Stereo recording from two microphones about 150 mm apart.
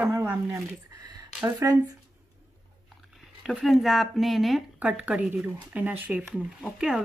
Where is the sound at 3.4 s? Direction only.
Centre (ahead or behind).